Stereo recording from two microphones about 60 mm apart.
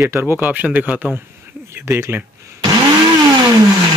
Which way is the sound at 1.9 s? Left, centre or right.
Right.